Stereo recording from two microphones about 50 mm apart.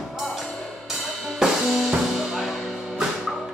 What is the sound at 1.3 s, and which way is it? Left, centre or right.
Music, centre.